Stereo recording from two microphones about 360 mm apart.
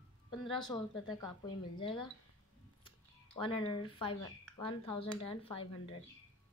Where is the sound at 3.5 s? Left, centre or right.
Centre.